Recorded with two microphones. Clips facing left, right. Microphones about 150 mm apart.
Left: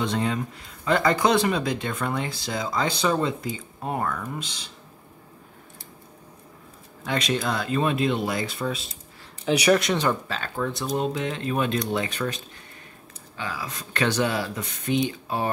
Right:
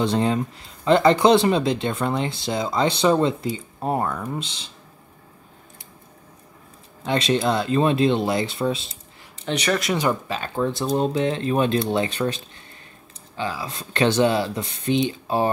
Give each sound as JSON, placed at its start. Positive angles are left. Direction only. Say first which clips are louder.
{"t": 0.0, "sound": "speech", "louder": "right 5 dB", "side_deg": -30}
{"t": 7.1, "sound": "speech", "louder": "right 5 dB", "side_deg": -25}
{"t": 9.5, "sound": "speech", "louder": "left 3 dB", "side_deg": 5}
{"t": 9.9, "sound": "speech", "louder": "right 2 dB", "side_deg": -15}
{"t": 13.4, "sound": "speech", "louder": "right 5 dB", "side_deg": -30}